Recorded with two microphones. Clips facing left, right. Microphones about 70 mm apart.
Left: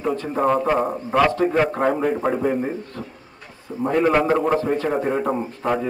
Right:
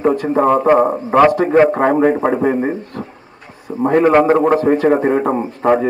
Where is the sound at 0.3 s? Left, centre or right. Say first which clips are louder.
Right 6 dB; right.